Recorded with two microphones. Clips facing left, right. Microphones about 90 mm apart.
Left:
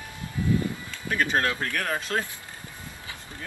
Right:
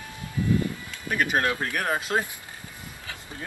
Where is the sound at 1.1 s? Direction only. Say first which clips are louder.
Right 1 dB; 15° right (ahead or behind).